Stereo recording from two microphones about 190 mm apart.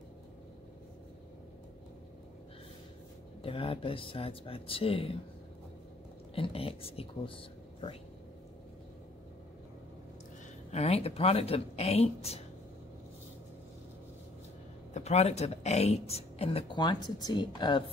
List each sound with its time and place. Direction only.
3.4 s speech: 30° left (ahead or behind)
6.3 s speech: 30° left (ahead or behind)
10.7 s speech: 35° left (ahead or behind)
15.0 s speech: 35° left (ahead or behind)